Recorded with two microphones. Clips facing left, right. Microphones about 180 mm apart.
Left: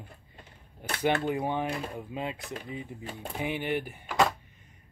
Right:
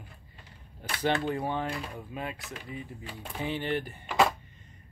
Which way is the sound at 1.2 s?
15° left (ahead or behind).